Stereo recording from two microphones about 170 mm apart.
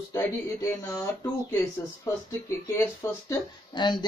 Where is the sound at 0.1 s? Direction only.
15° left (ahead or behind).